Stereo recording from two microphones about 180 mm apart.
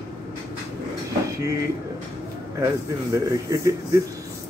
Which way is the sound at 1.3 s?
15° right (ahead or behind).